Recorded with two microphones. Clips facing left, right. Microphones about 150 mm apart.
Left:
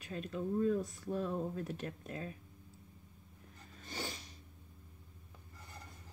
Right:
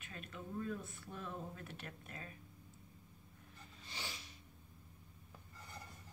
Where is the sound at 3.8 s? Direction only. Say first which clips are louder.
Left 7 dB; 45° left (ahead or behind).